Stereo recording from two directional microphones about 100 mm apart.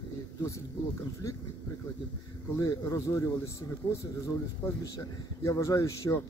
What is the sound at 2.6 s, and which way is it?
Speech, 35° left (ahead or behind).